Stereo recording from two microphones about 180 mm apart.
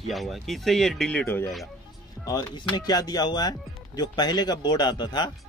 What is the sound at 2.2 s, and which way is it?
Speech, 20° left (ahead or behind).